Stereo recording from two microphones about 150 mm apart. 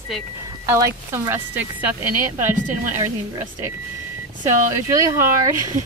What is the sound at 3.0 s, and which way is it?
Speech, 20° right (ahead or behind).